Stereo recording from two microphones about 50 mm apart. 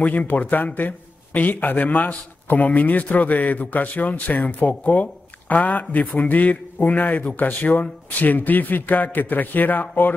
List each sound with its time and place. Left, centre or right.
0.0 s a man's voice: left